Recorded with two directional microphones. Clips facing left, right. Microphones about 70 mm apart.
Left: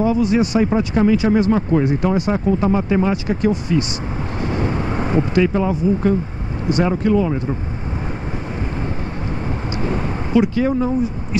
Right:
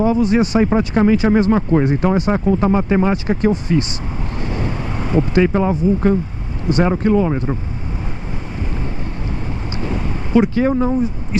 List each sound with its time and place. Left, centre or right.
0.0 s speech: right
4.8 s vehicle: left
5.3 s speech: right
10.3 s speech: right